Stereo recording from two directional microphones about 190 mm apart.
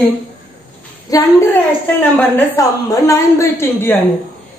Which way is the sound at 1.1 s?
20° left (ahead or behind).